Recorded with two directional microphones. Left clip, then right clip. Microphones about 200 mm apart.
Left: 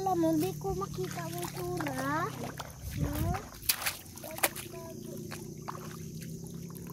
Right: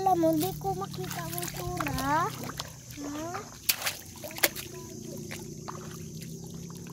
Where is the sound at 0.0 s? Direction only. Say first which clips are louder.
Right 5 dB; 30° right (ahead or behind).